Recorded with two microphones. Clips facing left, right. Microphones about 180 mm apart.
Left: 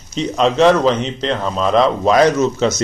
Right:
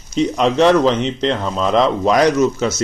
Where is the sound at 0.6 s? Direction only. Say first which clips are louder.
Even; 15° left (ahead or behind).